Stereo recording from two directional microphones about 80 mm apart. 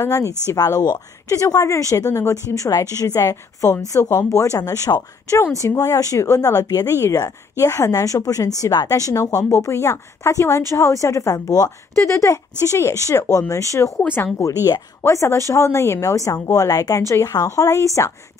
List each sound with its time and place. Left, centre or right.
0.0 s speech: left
0.6 s speech: left
12.0 s speech: left
14.0 s speech: left
14.4 s speech: left
16.6 s speech: left